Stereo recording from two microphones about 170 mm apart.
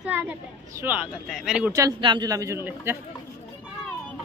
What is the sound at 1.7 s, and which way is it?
A man's voice, 20° right (ahead or behind).